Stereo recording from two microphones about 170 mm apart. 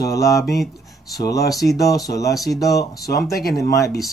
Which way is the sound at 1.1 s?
20° left (ahead or behind).